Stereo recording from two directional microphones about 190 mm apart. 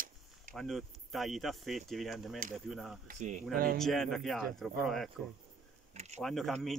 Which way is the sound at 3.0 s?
40° right (ahead or behind).